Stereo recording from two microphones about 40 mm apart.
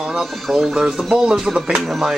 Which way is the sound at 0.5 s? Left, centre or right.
Centre.